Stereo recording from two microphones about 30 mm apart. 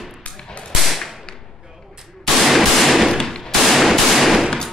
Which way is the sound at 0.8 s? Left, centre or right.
Centre.